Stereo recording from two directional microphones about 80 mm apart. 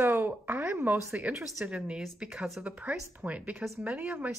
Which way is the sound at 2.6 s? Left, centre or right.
Centre.